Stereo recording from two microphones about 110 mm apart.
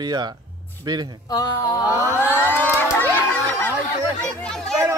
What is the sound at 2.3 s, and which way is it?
A child's voice, 20° left (ahead or behind).